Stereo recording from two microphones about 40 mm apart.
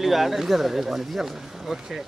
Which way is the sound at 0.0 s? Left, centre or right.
Centre.